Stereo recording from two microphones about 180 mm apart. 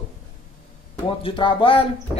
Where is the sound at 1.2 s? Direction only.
30° left (ahead or behind).